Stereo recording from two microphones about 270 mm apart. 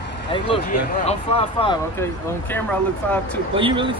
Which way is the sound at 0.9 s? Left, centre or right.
Left.